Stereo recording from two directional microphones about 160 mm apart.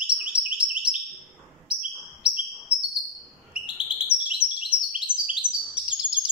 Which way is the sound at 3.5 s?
5° right (ahead or behind).